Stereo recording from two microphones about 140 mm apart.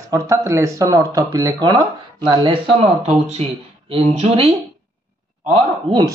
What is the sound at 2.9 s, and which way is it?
Speech, 50° right (ahead or behind).